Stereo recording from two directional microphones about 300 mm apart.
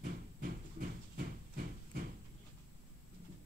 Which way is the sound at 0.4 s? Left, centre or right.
Right.